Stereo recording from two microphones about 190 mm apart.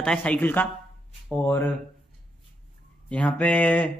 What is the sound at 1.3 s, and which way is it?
Speech, 15° right (ahead or behind).